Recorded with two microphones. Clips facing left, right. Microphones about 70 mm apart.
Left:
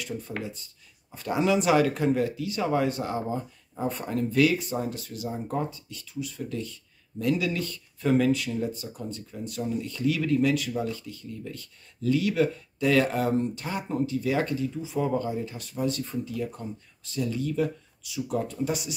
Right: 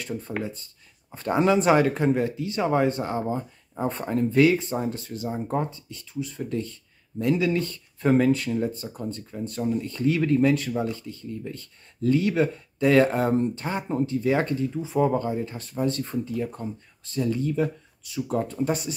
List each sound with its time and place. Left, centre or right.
0.4 s speech: right